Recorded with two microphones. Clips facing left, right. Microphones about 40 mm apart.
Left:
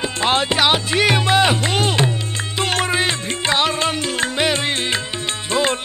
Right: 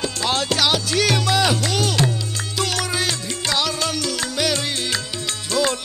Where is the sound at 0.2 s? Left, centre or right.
Left.